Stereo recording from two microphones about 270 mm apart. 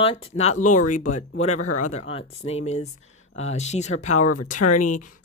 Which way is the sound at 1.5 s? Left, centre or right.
Left.